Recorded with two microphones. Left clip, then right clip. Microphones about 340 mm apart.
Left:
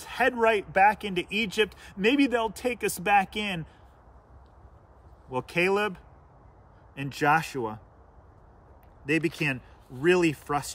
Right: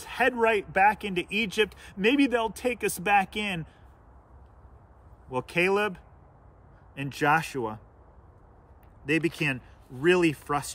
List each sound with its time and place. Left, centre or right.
0.0 s speech: centre
5.3 s speech: centre
9.0 s speech: centre